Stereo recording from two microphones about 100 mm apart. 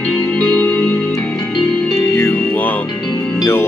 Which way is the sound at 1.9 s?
25° left (ahead or behind).